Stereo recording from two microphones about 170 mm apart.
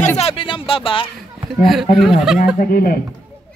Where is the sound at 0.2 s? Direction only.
35° left (ahead or behind).